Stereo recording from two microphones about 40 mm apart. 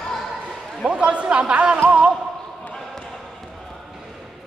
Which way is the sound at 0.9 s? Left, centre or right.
Right.